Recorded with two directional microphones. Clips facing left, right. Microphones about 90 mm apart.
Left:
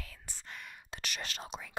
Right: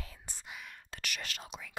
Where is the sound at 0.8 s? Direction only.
20° left (ahead or behind).